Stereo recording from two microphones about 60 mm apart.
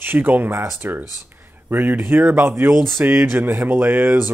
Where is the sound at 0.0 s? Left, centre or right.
Right.